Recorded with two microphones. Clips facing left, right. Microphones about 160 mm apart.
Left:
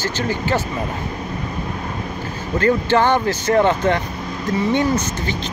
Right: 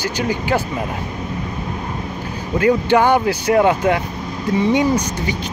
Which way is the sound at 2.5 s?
10° right (ahead or behind).